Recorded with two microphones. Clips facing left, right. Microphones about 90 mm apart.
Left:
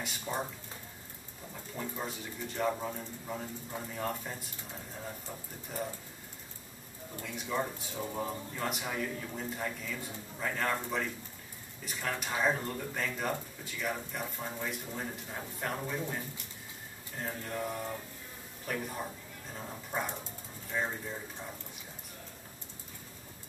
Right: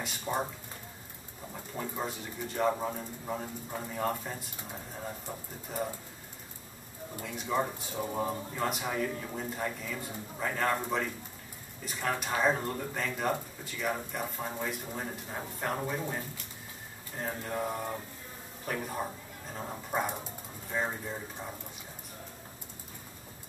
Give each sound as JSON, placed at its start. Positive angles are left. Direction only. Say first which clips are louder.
{"t": 0.2, "sound": "speech", "louder": "right 4 dB", "side_deg": -15}
{"t": 1.5, "sound": "speech", "louder": "right 2 dB", "side_deg": -15}
{"t": 7.4, "sound": "speech", "louder": "right 4 dB", "side_deg": -15}
{"t": 12.2, "sound": "speech", "louder": "right 2 dB", "side_deg": -10}
{"t": 17.2, "sound": "mantra", "louder": "right 3 dB", "side_deg": -20}
{"t": 18.7, "sound": "speech", "louder": "right 2 dB", "side_deg": -10}
{"t": 19.0, "sound": "speech", "louder": "right 3 dB", "side_deg": -20}